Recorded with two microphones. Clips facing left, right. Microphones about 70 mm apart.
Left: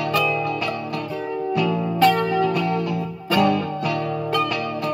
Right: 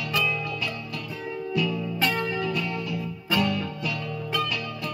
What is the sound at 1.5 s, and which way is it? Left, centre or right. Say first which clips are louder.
Music: left 5 dB; left.